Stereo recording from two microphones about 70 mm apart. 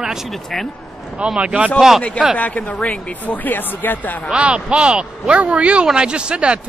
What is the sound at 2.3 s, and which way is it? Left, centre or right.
Speech, left.